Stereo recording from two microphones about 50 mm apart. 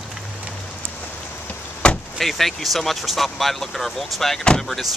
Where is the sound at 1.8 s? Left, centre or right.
Left.